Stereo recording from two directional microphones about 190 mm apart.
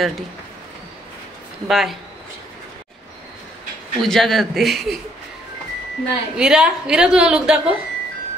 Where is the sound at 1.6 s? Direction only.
Centre (ahead or behind).